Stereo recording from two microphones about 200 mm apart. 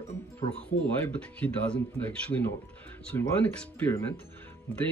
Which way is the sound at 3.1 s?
10° left (ahead or behind).